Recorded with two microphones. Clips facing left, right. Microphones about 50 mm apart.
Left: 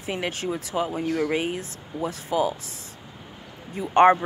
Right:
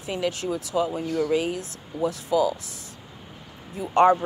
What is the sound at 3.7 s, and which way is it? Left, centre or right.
Speech, left.